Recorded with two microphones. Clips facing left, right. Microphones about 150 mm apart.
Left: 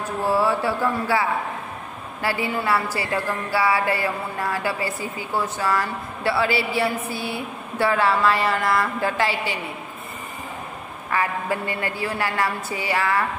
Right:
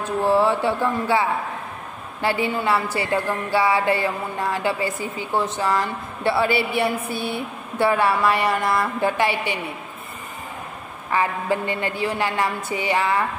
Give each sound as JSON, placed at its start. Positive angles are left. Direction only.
{"t": 0.2, "sound": "a woman's voice", "side_deg": -20}
{"t": 2.2, "sound": "a woman's voice", "side_deg": -25}
{"t": 11.1, "sound": "a woman's voice", "side_deg": -20}